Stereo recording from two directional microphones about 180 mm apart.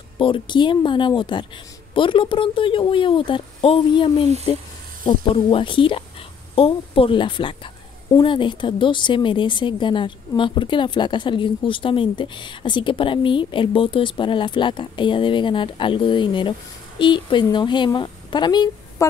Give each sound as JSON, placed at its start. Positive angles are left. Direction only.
{"t": 0.2, "sound": "a woman's voice", "side_deg": 25}